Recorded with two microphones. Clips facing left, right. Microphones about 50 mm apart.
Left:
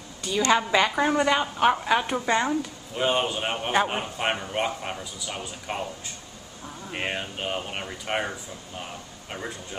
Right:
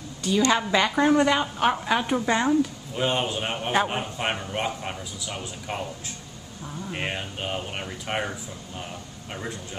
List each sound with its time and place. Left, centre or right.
0.2 s a woman's voice: centre